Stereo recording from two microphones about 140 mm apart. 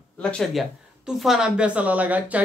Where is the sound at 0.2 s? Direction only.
5° left (ahead or behind).